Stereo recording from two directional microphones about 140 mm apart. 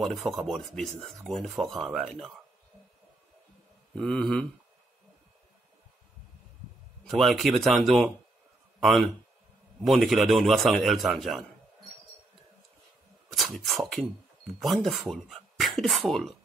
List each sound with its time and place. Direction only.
0.0 s speech: centre (ahead or behind)
3.9 s speech: 5° left (ahead or behind)
7.1 s speech: centre (ahead or behind)
13.3 s speech: centre (ahead or behind)